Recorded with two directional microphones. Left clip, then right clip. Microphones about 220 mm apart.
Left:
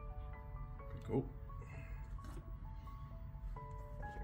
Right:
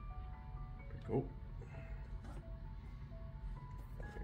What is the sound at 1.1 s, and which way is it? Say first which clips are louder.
Speech: even; 10° left (ahead or behind).